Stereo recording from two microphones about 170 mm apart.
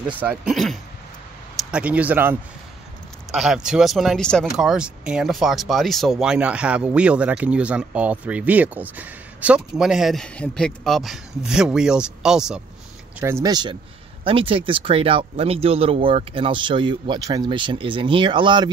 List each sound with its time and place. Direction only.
0.0 s speech: 5° right (ahead or behind)
3.3 s speech: 5° right (ahead or behind)
13.2 s speech: 20° right (ahead or behind)